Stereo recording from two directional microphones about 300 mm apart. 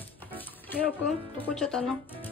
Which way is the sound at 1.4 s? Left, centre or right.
Centre.